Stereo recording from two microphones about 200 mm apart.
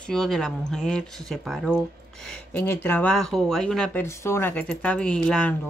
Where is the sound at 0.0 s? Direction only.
Centre (ahead or behind).